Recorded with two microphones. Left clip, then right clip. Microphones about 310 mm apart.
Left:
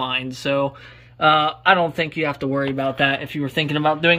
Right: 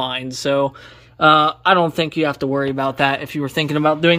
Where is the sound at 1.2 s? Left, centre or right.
Right.